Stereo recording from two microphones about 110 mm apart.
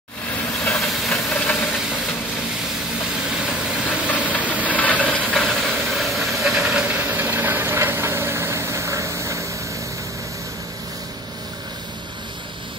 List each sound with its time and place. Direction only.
0.6 s hiss: 5° left (ahead or behind)
1.3 s hiss: 15° left (ahead or behind)
4.1 s engine: 15° left (ahead or behind)
4.6 s a sound: 15° left (ahead or behind); by 9.4 s 30° right (ahead or behind)